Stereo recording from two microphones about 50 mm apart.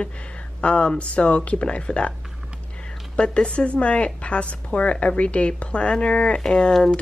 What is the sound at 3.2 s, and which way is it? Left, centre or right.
A woman's voice, left.